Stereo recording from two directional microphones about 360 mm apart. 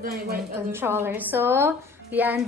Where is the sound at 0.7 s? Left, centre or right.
Centre.